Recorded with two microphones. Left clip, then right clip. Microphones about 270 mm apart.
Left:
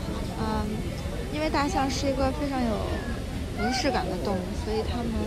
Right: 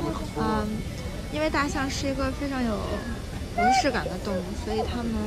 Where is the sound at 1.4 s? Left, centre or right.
Centre.